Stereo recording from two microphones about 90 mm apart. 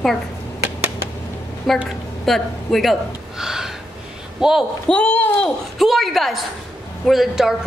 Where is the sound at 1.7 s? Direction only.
Centre (ahead or behind).